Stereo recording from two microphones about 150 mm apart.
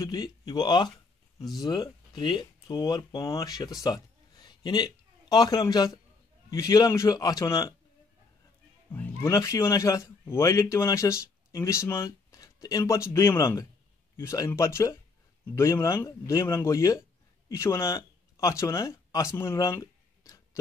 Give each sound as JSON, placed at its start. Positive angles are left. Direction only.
{"t": 0.0, "sound": "speech", "side_deg": 25}
{"t": 8.9, "sound": "speech", "side_deg": 15}